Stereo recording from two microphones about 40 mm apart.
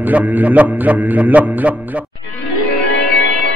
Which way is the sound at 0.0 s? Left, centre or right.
Right.